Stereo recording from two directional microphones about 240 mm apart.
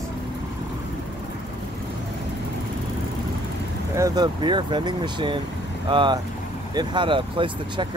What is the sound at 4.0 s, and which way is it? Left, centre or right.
Speech, centre.